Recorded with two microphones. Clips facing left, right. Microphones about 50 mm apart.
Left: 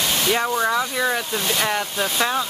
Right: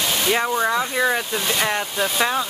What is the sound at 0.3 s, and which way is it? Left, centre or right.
Speech, centre.